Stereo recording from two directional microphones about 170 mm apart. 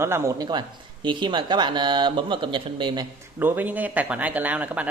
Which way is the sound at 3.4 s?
10° right (ahead or behind).